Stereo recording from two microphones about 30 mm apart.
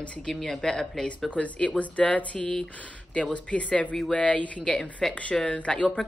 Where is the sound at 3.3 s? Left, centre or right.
Left.